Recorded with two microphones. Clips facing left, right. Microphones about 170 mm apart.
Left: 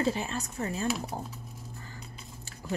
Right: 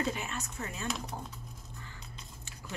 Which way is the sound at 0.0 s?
30° left (ahead or behind).